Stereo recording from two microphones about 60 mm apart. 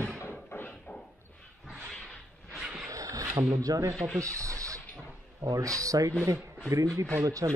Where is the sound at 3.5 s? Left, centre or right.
Right.